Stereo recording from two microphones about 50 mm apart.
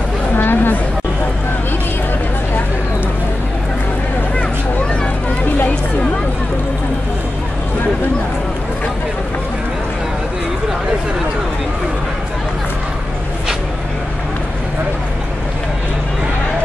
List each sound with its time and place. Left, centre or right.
0.4 s chatter: left